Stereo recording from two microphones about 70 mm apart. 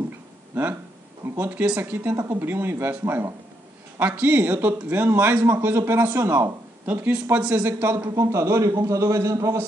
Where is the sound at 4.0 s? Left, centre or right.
Right.